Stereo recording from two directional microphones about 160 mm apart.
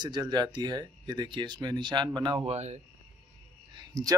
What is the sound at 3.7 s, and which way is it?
Speech, 25° right (ahead or behind).